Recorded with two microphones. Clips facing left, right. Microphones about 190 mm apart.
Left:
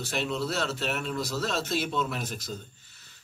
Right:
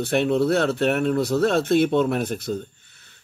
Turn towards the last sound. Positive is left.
turn(degrees=-55)  # may be behind; listen again after turning